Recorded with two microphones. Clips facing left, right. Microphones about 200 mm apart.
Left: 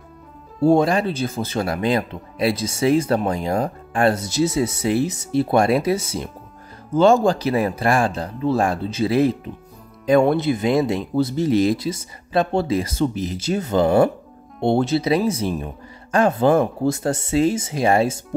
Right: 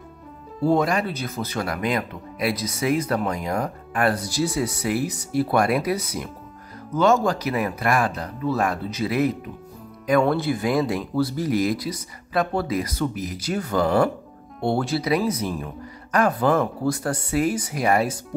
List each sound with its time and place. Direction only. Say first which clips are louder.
0.7 s speech: left 4 dB; 30° left (ahead or behind)